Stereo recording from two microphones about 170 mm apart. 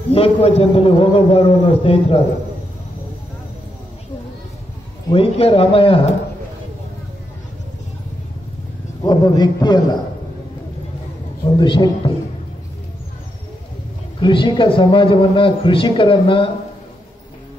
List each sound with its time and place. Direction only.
0.1 s a man's voice: 35° left (ahead or behind)
5.1 s a man's voice: 35° left (ahead or behind)
9.0 s a man's voice: 25° left (ahead or behind)
11.5 s a man's voice: 25° left (ahead or behind)
14.2 s a man's voice: 30° left (ahead or behind)